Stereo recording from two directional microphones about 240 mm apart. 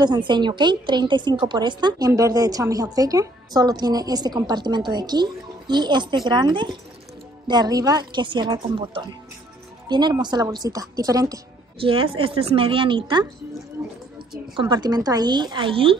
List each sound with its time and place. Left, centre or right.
0.0 s a woman's voice: centre
14.5 s speech: centre